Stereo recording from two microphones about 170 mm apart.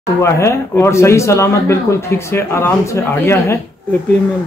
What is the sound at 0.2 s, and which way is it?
Speech, 15° left (ahead or behind).